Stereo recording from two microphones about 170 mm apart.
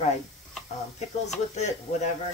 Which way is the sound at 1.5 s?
40° left (ahead or behind).